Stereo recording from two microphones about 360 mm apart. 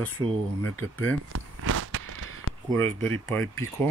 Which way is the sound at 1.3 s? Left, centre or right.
Right.